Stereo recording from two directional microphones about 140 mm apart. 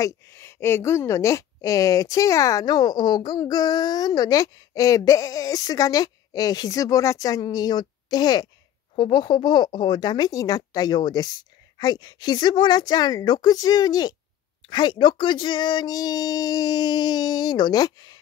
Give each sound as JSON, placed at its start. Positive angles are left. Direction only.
{"t": 0.0, "sound": "speech", "side_deg": 20}